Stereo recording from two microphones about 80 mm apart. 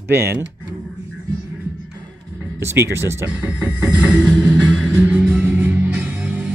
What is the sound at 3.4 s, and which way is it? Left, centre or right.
Music, centre.